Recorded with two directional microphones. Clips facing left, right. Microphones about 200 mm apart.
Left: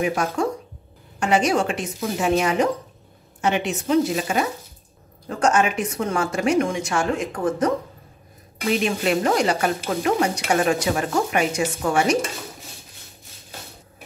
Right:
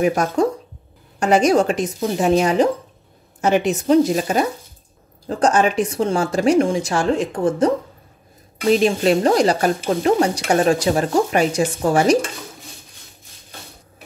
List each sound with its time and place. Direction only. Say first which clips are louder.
0.0 s a woman's voice: right 5 dB; 40° right (ahead or behind)